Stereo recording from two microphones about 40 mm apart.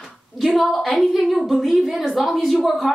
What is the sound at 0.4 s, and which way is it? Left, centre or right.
A woman's voice, centre.